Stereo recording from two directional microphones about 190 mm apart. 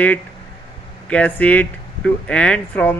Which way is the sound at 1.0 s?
5° left (ahead or behind).